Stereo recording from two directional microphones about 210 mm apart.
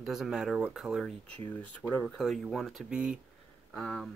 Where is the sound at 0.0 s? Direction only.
Centre (ahead or behind).